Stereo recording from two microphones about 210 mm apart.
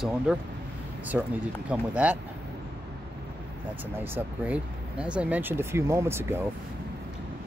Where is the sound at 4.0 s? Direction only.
10° right (ahead or behind).